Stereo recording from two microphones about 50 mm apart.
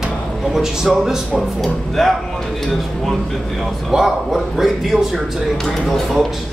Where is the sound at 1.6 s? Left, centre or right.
Centre.